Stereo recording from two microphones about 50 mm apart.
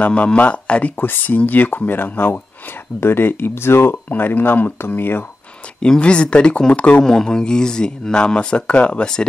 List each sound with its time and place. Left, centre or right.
0.0 s speech: left
0.9 s speech: left
4.1 s speech: left
5.8 s speech: centre